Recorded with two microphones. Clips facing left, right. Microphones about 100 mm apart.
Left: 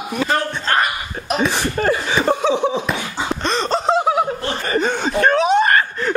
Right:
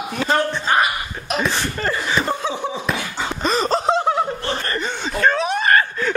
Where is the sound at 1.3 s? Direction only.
20° left (ahead or behind).